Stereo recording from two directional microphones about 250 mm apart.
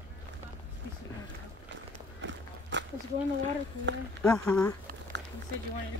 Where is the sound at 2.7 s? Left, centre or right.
Right.